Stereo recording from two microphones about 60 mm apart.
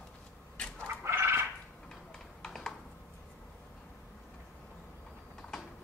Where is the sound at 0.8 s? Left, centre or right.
Right.